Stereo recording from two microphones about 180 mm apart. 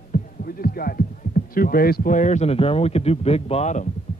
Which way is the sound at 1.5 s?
55° left (ahead or behind).